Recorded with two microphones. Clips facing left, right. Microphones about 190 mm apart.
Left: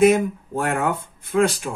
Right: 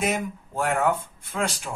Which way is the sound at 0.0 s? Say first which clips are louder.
Left 11 dB; 55° left (ahead or behind).